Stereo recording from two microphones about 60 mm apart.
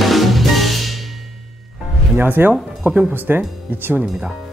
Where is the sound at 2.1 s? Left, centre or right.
Right.